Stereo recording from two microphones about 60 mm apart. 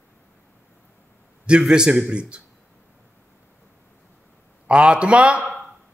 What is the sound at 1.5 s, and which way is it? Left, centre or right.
Speech, centre.